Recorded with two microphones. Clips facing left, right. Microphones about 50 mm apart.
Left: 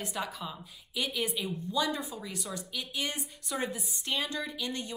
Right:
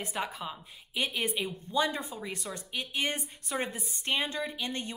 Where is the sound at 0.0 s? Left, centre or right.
Right.